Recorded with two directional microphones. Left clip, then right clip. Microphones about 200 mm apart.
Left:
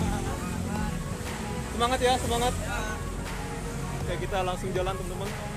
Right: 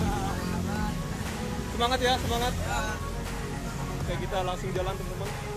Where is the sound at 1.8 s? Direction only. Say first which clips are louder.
Left 1 dB; 20° left (ahead or behind).